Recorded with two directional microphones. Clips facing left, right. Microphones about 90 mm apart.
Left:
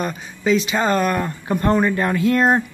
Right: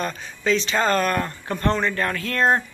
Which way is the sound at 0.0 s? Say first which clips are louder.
Left 3 dB; 10° left (ahead or behind).